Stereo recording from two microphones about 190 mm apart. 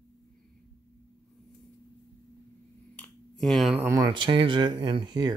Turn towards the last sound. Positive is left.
turn(degrees=-20)  # may be behind; listen again after turning